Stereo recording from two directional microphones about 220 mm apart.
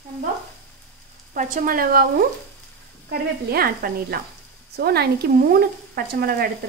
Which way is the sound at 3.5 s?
45° right (ahead or behind).